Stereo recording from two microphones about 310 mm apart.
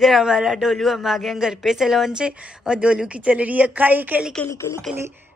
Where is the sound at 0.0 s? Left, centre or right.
Centre.